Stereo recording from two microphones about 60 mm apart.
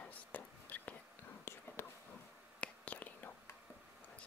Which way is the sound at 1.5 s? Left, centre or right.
Left.